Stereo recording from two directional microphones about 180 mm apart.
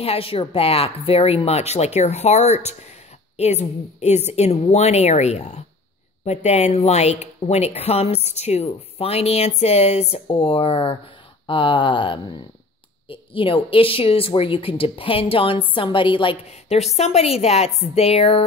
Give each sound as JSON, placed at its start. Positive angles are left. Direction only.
{"t": 0.0, "sound": "speech", "side_deg": 30}